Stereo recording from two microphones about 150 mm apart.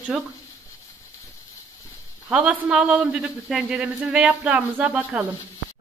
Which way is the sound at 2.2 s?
10° right (ahead or behind).